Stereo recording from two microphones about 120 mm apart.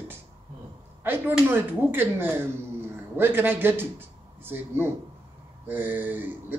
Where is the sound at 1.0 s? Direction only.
15° right (ahead or behind).